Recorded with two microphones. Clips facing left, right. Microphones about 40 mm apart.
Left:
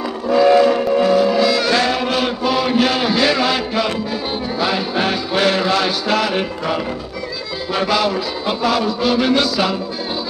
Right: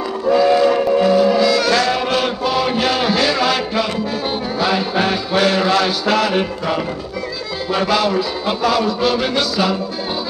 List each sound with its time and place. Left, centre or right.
0.4 s train: centre
0.7 s music: centre
1.5 s music: centre
1.9 s choir: centre
2.5 s chant: centre
3.1 s a sound: centre
3.3 s music: centre
8.1 s music: centre